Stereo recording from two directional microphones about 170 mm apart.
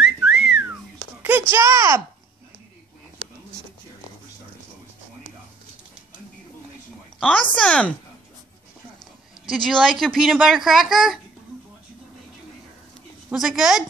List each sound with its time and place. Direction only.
0.0 s whistling: 5° right (ahead or behind)
1.5 s speech: 20° right (ahead or behind)
7.2 s speech: 10° left (ahead or behind)
9.5 s speech: centre (ahead or behind)
13.3 s speech: centre (ahead or behind)